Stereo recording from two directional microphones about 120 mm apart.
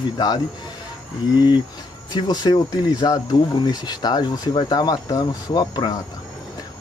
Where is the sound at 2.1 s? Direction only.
35° left (ahead or behind).